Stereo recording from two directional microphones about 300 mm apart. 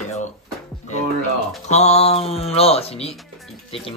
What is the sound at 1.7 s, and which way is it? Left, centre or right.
Speech, left.